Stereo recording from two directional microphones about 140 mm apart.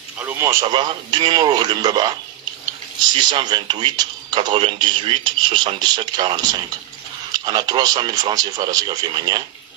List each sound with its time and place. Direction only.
0.2 s speech: 15° right (ahead or behind)
0.7 s speech: 30° right (ahead or behind)
3.2 s speech: 30° right (ahead or behind)